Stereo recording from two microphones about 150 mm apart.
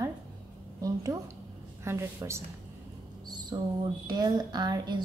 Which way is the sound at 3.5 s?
30° right (ahead or behind).